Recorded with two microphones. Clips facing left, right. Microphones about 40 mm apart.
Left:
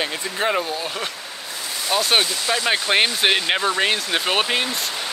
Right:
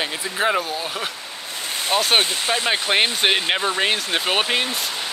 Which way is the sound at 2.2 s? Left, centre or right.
Right.